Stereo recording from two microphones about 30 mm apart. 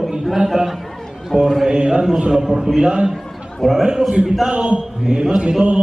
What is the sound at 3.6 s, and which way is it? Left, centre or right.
Speech, centre.